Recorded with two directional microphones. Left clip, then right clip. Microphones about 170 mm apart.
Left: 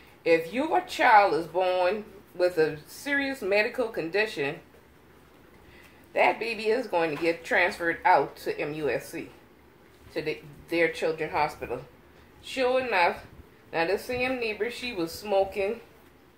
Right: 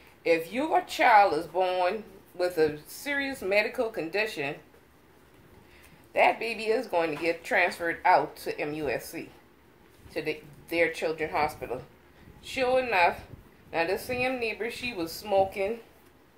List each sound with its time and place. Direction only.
0.5 s speech: 35° right (ahead or behind)
6.1 s speech: 35° right (ahead or behind)